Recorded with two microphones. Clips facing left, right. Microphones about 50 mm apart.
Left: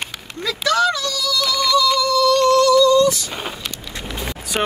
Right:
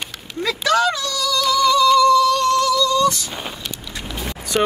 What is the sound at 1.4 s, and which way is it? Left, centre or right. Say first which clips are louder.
Music: right 3 dB; right.